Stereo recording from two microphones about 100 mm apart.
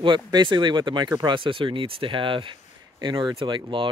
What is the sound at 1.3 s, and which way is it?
Speech, 55° right (ahead or behind).